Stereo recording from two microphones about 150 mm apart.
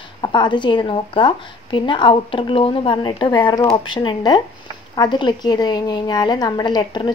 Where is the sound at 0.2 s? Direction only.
30° left (ahead or behind).